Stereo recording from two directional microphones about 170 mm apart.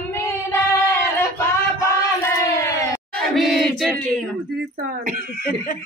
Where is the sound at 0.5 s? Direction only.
15° left (ahead or behind).